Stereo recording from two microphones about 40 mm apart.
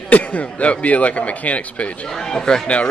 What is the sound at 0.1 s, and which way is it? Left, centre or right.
Speech, left.